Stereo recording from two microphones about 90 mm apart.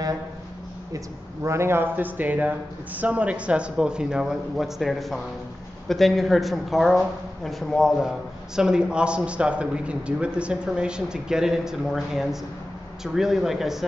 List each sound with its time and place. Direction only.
0.9 s a man's voice: 30° right (ahead or behind); by 13.8 s 5° right (ahead or behind)